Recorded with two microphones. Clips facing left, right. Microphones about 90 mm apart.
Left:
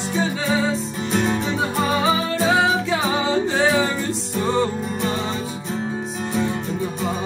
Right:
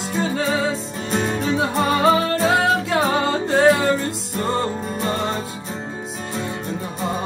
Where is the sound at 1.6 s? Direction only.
60° right (ahead or behind); by 4.7 s 45° right (ahead or behind).